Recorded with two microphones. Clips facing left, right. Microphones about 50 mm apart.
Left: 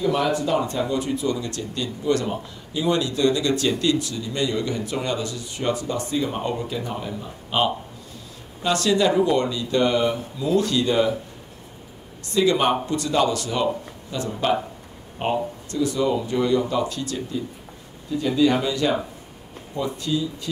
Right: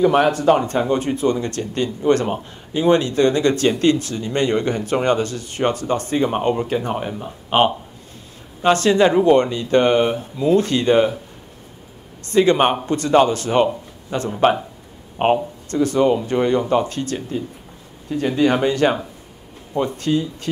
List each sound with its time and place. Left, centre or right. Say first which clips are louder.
0.0 s speech: right 7 dB; right
12.3 s speech: right 4 dB; right